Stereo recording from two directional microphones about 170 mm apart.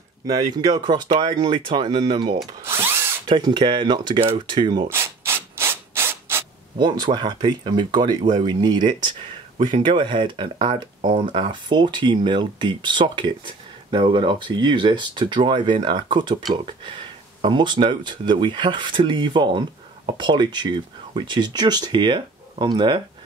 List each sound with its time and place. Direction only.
0.3 s speech: 25° right (ahead or behind)
2.6 s drill: 15° right (ahead or behind)
3.3 s speech: 30° right (ahead or behind)
4.8 s rub: 15° right (ahead or behind)
6.8 s speech: 25° right (ahead or behind)